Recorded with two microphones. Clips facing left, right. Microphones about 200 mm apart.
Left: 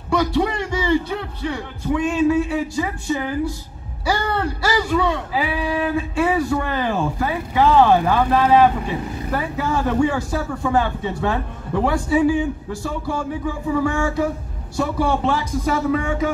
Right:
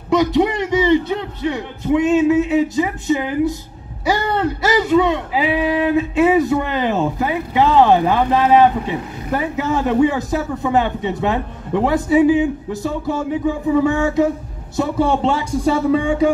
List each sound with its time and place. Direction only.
0.1 s speech: 20° right (ahead or behind)